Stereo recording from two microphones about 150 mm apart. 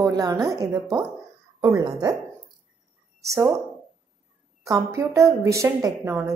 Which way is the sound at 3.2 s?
20° right (ahead or behind).